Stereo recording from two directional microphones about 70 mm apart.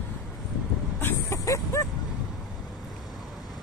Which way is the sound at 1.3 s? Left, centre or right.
Left.